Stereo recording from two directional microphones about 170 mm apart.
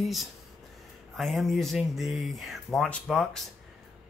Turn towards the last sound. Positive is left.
turn(degrees=5)  # may be behind; listen again after turning